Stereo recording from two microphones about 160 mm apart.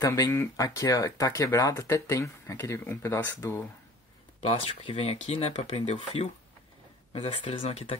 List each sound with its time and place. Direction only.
0.0 s speech: 20° left (ahead or behind)
4.4 s speech: 40° left (ahead or behind)